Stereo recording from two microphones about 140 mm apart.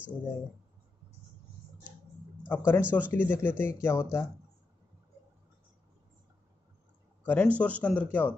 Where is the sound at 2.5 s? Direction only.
15° left (ahead or behind).